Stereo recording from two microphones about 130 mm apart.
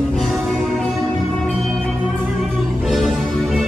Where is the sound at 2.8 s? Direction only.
Centre (ahead or behind).